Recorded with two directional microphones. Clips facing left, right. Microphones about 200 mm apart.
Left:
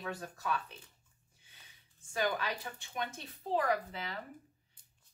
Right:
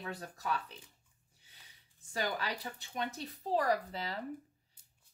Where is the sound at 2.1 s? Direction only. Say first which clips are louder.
Left 2 dB; 35° right (ahead or behind).